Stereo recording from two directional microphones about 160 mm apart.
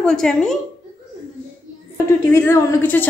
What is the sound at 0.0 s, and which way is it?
Speech, 5° left (ahead or behind).